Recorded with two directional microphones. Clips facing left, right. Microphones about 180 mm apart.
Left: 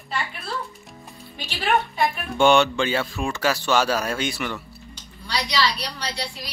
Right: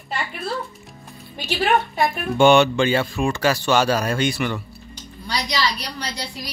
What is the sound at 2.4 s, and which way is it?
Speech, centre (ahead or behind).